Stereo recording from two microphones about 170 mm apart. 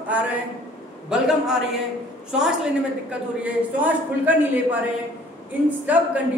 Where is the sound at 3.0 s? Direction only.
10° right (ahead or behind).